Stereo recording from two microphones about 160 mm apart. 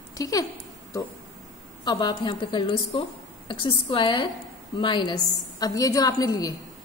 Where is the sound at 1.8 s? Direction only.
25° left (ahead or behind).